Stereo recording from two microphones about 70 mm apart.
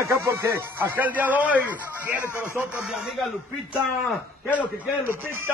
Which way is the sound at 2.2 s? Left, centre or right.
Left.